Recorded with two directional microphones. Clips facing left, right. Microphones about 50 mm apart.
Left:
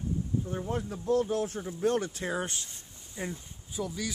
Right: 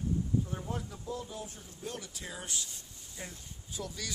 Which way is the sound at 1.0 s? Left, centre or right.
Left.